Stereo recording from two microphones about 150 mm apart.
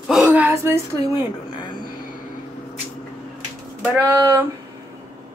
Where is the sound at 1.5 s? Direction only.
30° left (ahead or behind).